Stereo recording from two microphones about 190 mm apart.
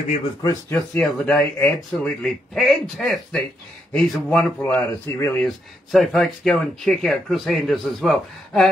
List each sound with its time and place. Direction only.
0.4 s speech: 20° left (ahead or behind)
0.9 s speech: centre (ahead or behind)
5.4 s speech: centre (ahead or behind)